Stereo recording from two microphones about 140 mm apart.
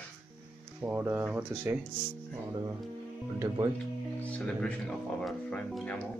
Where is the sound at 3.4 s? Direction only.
20° right (ahead or behind).